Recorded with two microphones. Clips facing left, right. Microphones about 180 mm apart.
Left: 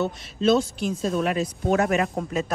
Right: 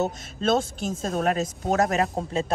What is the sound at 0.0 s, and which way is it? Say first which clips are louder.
Speech: left 3 dB; 50° right (ahead or behind).